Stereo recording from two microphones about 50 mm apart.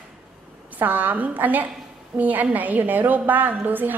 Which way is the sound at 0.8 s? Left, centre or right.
Right.